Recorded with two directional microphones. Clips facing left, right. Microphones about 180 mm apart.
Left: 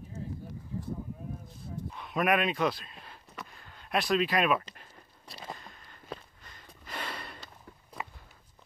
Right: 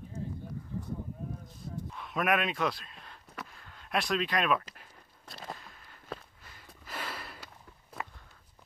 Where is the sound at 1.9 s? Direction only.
Centre (ahead or behind).